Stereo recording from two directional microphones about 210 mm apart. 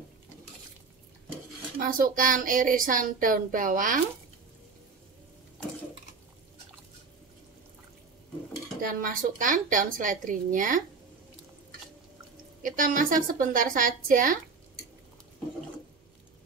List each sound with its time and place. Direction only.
1.8 s speech: 40° right (ahead or behind)
8.8 s speech: 40° right (ahead or behind)
12.6 s speech: 40° right (ahead or behind)